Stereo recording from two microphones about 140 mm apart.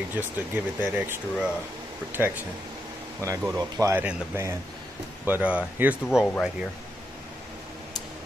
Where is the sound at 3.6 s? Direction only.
20° right (ahead or behind); by 6.3 s 5° right (ahead or behind).